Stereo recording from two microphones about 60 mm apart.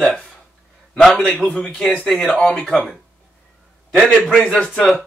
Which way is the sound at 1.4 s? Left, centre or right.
Left.